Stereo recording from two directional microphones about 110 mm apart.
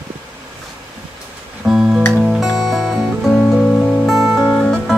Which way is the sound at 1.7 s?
5° right (ahead or behind).